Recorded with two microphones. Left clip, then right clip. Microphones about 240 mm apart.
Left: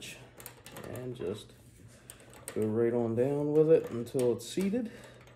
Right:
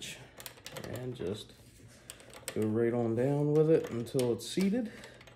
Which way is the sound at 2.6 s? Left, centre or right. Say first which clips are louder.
Left 1 dB; right.